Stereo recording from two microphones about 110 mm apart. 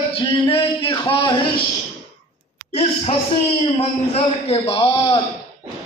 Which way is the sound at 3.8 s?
60° left (ahead or behind).